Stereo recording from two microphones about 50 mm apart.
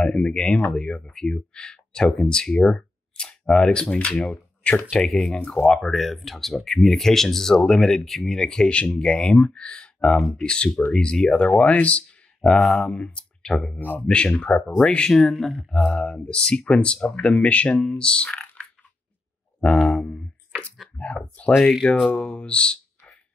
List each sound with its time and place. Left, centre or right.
0.0 s speech: centre
5.4 s speech: left
5.9 s speech: centre
13.7 s speech: left
14.0 s speech: left
19.6 s a sound: centre
21.0 s speech: left